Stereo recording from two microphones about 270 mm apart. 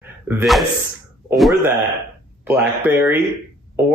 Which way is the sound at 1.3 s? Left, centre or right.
Centre.